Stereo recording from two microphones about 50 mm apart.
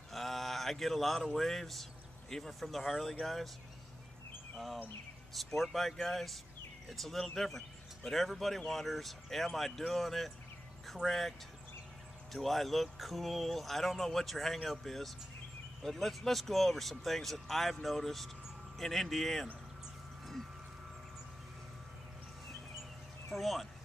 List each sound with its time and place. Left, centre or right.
0.1 s a sound: centre
1.2 s speech: centre
5.3 s speech: centre
23.3 s speech: centre